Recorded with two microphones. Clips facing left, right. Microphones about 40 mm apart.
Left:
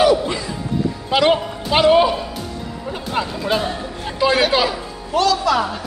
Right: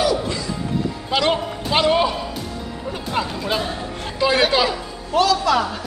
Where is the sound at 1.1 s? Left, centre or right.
Centre.